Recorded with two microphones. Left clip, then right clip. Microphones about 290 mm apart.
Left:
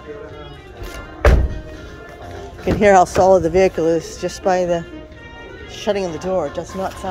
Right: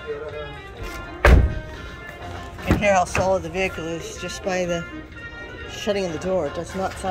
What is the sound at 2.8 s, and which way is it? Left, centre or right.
Speech, left.